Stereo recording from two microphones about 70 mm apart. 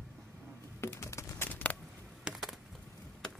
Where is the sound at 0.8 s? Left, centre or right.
Left.